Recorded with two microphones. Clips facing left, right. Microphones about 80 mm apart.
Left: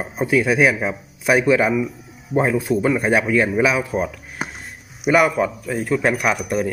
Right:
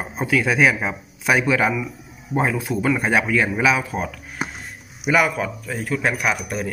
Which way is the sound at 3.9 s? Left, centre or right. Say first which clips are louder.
Left 4 dB; centre.